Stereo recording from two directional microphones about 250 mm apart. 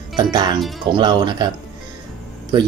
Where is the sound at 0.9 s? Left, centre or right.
Centre.